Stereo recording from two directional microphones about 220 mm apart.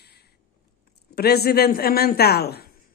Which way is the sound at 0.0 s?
50° left (ahead or behind).